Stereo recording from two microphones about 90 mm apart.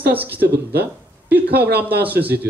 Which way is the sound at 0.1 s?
20° right (ahead or behind).